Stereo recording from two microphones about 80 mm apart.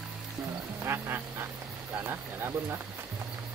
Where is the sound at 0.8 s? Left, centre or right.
Right.